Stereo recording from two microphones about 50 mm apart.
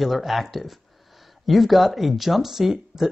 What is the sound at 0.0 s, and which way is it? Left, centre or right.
Speech, centre.